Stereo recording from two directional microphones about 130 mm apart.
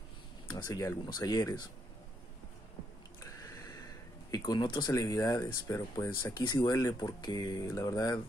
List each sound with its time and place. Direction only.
0.5 s speech: 30° left (ahead or behind)
3.2 s a sound: 25° left (ahead or behind)
5.7 s speech: 30° left (ahead or behind)